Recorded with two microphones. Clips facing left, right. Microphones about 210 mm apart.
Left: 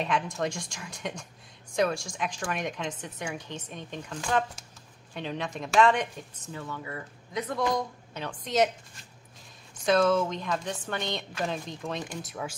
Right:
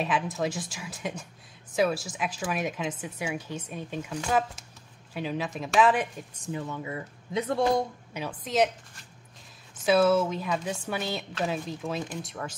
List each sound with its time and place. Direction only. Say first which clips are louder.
0.0 s a woman's voice: right 1 dB; 5° right (ahead or behind)
6.4 s speech: right 5 dB; 20° right (ahead or behind)
8.1 s a woman's voice: right 1 dB; 10° right (ahead or behind)
9.8 s a woman's voice: right 2 dB; 5° right (ahead or behind)